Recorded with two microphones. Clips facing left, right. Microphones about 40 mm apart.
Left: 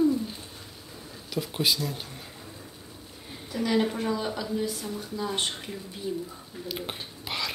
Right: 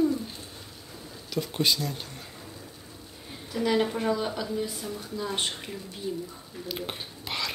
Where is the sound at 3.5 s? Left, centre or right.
Centre.